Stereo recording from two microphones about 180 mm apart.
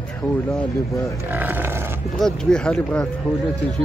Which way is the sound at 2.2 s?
5° left (ahead or behind).